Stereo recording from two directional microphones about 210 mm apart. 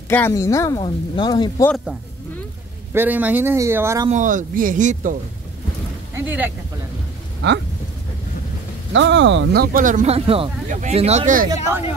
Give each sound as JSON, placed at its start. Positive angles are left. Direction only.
{"t": 0.1, "sound": "speech", "side_deg": 10}
{"t": 2.9, "sound": "speech", "side_deg": -10}
{"t": 4.1, "sound": "speech", "side_deg": -35}
{"t": 6.1, "sound": "speech", "side_deg": -10}
{"t": 7.4, "sound": "speech", "side_deg": -55}
{"t": 8.9, "sound": "speech", "side_deg": -60}